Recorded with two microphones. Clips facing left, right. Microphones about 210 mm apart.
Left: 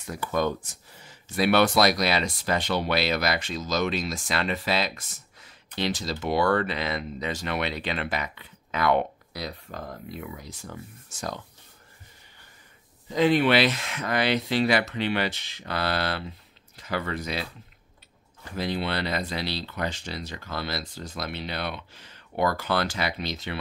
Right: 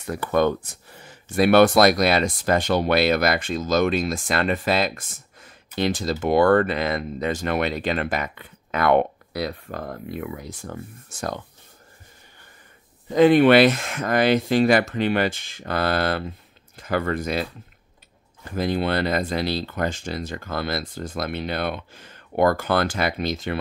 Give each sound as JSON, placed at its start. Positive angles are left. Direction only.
{"t": 0.0, "sound": "speech", "side_deg": -60}
{"t": 13.1, "sound": "speech", "side_deg": -55}